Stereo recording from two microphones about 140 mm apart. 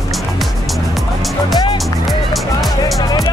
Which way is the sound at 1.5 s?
30° left (ahead or behind).